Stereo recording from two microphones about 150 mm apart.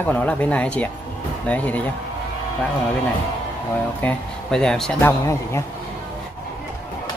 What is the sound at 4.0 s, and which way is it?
Speech, 5° left (ahead or behind).